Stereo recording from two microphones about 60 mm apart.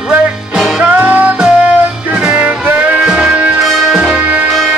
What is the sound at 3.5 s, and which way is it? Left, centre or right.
Music, centre.